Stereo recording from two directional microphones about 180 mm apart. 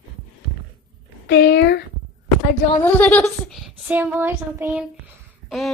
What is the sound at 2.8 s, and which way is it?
A woman's voice, 10° left (ahead or behind).